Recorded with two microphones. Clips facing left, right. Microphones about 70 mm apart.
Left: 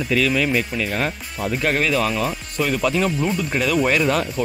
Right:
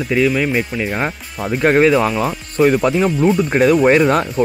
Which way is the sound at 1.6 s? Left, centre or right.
Right.